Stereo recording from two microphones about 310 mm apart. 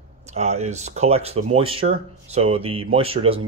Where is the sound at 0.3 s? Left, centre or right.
Right.